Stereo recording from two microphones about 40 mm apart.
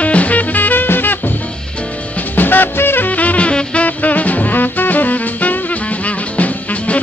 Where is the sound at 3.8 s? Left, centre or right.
Left.